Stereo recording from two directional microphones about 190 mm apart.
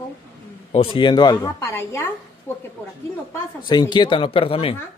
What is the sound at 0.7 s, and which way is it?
A woman's voice, 25° left (ahead or behind).